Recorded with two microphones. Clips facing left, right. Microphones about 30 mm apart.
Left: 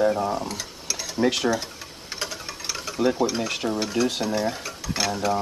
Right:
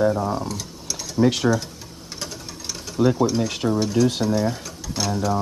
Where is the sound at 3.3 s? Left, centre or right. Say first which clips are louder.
Right 3 dB; centre.